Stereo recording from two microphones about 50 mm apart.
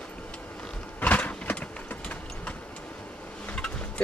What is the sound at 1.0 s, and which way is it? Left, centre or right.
Vehicle, left.